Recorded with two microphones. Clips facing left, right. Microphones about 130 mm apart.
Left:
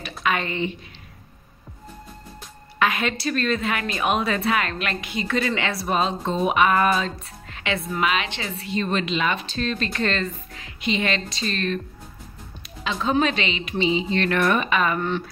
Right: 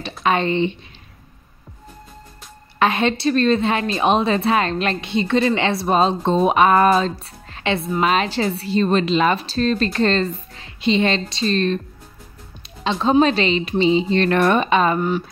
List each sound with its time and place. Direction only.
0.2 s speech: 30° right (ahead or behind)
2.8 s a woman's voice: 30° right (ahead or behind)
12.8 s a woman's voice: 30° right (ahead or behind)
15.0 s a woman's voice: 10° right (ahead or behind)